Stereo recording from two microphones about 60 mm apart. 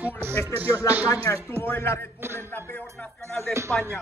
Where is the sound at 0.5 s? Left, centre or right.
Right.